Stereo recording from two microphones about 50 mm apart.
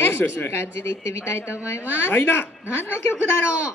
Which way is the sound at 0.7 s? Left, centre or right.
Left.